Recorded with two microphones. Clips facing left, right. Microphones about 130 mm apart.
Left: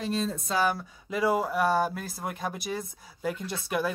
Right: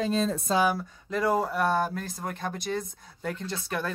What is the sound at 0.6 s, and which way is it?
Speech, centre (ahead or behind).